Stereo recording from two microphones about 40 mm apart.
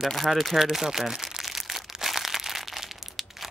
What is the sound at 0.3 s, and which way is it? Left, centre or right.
Crumpling, centre.